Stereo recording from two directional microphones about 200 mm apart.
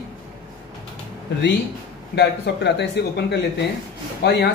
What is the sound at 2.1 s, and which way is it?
A man's voice, 55° left (ahead or behind).